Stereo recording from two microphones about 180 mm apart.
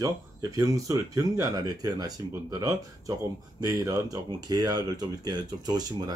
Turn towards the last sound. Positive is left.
turn(degrees=-20)  # may be behind; listen again after turning